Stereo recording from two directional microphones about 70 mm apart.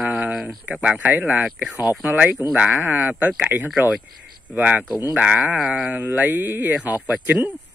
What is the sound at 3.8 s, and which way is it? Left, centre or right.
Speech, left.